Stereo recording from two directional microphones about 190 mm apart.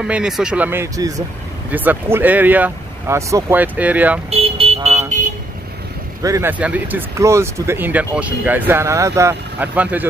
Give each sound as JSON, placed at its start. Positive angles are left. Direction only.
{"t": 0.0, "sound": "speech", "side_deg": -5}
{"t": 4.3, "sound": "vehicle", "side_deg": -30}
{"t": 6.2, "sound": "speech", "side_deg": -15}